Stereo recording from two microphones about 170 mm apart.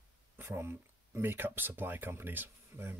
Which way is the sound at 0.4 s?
15° right (ahead or behind).